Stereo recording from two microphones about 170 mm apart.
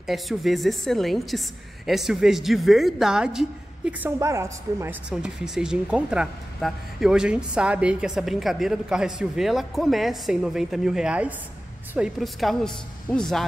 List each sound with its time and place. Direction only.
0.0 s speech: centre (ahead or behind)
4.2 s a woman's voice: 15° right (ahead or behind)
5.1 s speech: 5° right (ahead or behind)